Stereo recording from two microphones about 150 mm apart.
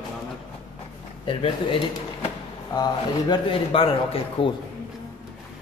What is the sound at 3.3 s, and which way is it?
Speech, 40° left (ahead or behind).